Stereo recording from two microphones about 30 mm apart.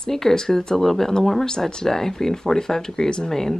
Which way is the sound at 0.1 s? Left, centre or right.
Centre.